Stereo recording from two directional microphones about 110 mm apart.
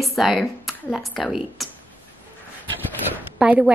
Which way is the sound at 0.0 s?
Centre (ahead or behind).